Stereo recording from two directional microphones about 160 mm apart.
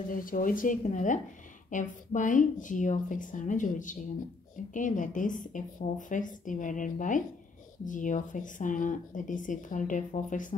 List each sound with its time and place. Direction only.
0.1 s speech: 60° left (ahead or behind)